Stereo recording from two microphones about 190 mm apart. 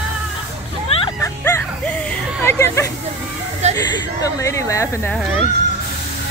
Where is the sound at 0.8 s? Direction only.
30° left (ahead or behind).